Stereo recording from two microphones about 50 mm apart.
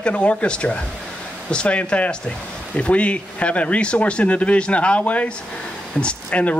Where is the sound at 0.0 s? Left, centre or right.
Left.